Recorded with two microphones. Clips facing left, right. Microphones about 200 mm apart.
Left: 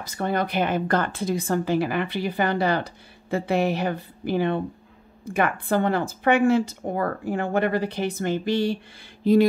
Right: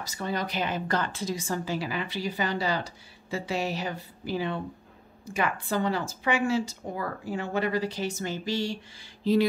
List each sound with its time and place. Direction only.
0.0 s speech: 55° left (ahead or behind)
9.2 s mantra: 50° left (ahead or behind)